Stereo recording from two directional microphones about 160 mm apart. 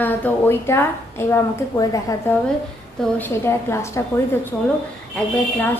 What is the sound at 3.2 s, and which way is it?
Speech, 15° left (ahead or behind).